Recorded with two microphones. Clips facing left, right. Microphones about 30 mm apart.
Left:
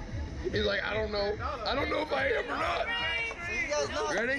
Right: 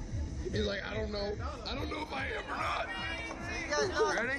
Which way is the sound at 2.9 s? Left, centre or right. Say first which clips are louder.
Left 7 dB; left.